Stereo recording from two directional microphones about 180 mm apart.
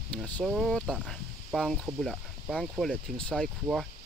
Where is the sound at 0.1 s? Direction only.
5° left (ahead or behind).